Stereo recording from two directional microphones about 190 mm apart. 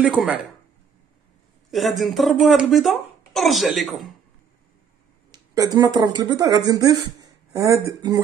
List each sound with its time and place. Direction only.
0.0 s speech: 5° right (ahead or behind)
1.7 s speech: centre (ahead or behind)
5.3 s speech: 20° right (ahead or behind)